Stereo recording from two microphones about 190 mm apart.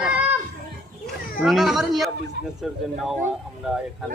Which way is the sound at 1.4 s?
Centre (ahead or behind).